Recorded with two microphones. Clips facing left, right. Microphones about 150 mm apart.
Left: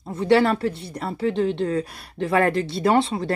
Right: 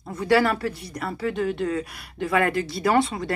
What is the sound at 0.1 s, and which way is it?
A woman's voice, 25° left (ahead or behind).